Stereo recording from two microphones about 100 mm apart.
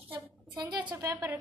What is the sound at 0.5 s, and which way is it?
Speech, 50° right (ahead or behind).